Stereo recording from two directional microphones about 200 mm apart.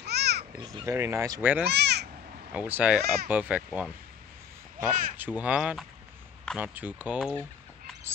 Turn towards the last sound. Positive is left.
turn(degrees=0)  # may be behind; listen again after turning